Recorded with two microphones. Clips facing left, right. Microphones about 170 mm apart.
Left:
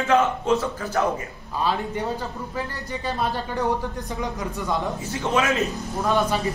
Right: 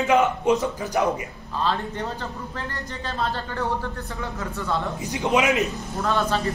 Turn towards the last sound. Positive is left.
turn(degrees=15)  # may be behind; listen again after turning